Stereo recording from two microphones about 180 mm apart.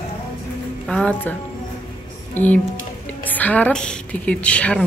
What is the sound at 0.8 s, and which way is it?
Speech, 5° left (ahead or behind).